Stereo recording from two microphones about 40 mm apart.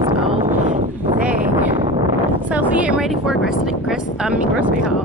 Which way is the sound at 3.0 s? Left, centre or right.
Centre.